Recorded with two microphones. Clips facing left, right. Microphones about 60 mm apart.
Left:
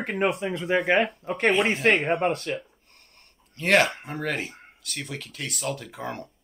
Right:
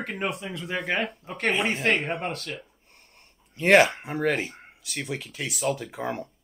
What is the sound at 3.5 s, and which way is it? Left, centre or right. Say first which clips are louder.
Speech: right 3 dB; centre.